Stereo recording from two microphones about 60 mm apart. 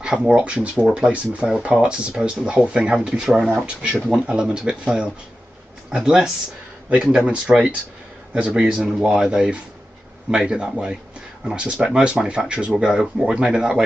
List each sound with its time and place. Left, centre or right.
0.0 s speech: centre